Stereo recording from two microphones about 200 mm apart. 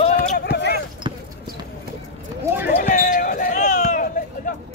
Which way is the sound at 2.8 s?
40° left (ahead or behind).